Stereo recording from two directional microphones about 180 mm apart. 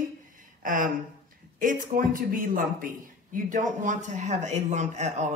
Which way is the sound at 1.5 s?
50° right (ahead or behind).